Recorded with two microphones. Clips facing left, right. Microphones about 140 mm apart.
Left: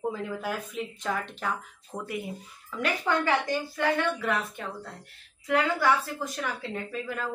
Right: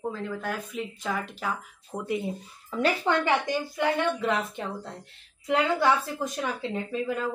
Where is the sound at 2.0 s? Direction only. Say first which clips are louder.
Right 5 dB; 25° right (ahead or behind).